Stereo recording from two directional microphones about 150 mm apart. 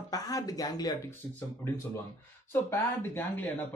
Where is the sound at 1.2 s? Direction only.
15° left (ahead or behind).